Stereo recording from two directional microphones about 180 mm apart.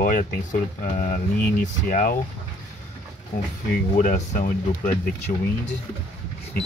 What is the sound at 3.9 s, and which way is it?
Speech, 45° left (ahead or behind).